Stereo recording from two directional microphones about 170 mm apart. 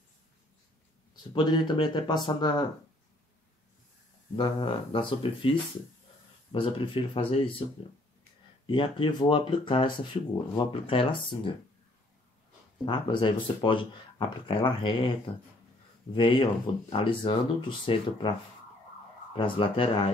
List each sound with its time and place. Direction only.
1.1 s speech: 25° left (ahead or behind)
4.4 s speech: 30° left (ahead or behind)
8.6 s speech: 30° left (ahead or behind)
12.8 s speech: 30° left (ahead or behind)
16.1 s speech: 30° left (ahead or behind)
19.3 s speech: 30° left (ahead or behind)